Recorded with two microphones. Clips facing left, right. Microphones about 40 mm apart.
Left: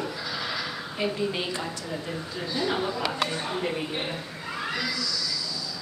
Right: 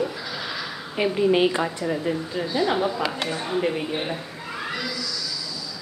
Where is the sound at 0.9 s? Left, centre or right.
Right.